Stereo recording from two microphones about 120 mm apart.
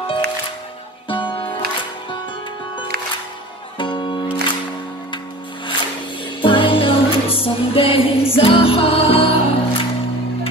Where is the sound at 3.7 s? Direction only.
40° left (ahead or behind).